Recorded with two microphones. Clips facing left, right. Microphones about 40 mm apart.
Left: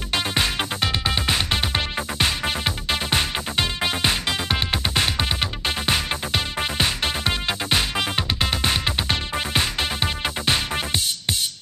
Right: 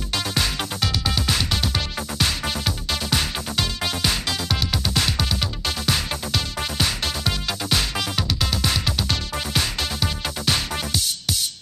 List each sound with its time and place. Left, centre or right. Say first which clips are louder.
0.1 s music: left 2 dB; left